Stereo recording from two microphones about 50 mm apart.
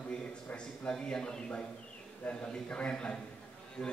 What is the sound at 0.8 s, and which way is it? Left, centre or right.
Speech, centre.